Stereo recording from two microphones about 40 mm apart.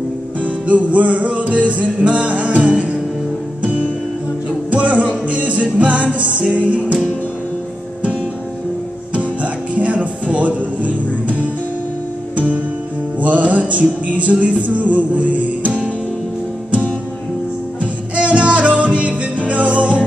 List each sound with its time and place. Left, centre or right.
0.4 s music: right
4.6 s music: right
9.1 s music: right
12.4 s music: right
18.1 s music: right